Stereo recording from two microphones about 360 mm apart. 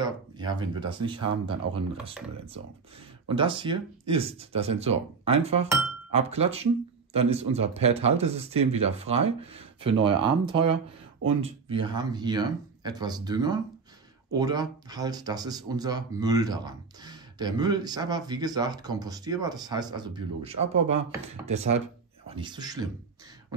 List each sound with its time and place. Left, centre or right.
0.0 s speech: centre
3.3 s speech: centre